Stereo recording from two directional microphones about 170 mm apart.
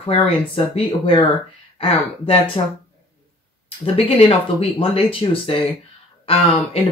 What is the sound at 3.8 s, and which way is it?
Speech, 35° left (ahead or behind).